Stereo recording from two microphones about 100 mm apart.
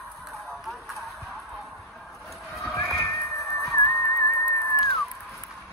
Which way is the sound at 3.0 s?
30° left (ahead or behind).